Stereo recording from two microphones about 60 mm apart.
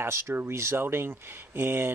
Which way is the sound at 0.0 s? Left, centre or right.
Right.